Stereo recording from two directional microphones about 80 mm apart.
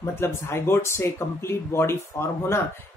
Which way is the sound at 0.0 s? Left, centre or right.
Left.